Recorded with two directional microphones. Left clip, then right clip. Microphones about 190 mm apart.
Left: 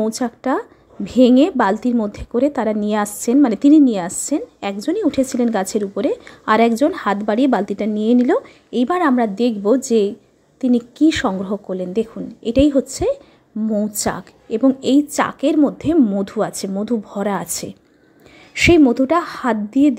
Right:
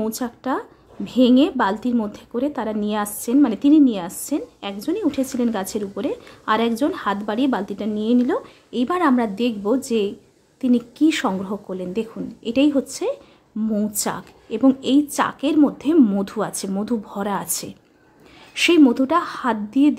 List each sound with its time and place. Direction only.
0.0 s a woman's voice: 20° left (ahead or behind)
13.7 s speech: 5° left (ahead or behind)
13.9 s a woman's voice: 15° left (ahead or behind)